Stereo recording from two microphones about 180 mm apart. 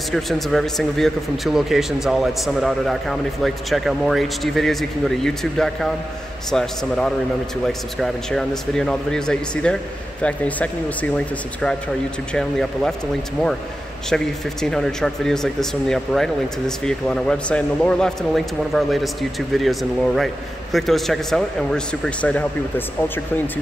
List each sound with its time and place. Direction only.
0.1 s speech: centre (ahead or behind)
12.4 s speech: 5° left (ahead or behind)
14.0 s speech: 5° left (ahead or behind)